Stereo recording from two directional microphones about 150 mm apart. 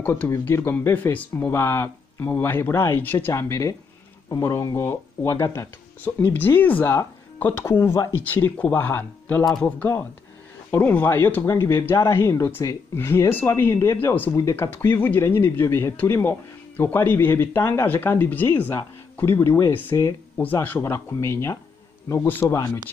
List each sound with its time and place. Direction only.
0.0 s speech: 15° left (ahead or behind)
9.4 s speech: centre (ahead or behind)
9.7 s speech: 15° left (ahead or behind)